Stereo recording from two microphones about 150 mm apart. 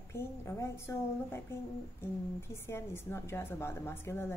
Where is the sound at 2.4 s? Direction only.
15° left (ahead or behind).